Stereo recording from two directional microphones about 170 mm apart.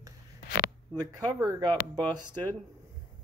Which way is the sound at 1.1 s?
20° right (ahead or behind).